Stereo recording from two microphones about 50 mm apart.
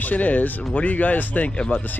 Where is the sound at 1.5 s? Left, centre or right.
Centre.